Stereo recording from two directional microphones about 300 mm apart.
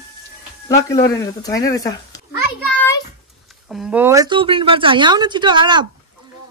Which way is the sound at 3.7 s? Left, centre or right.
Centre.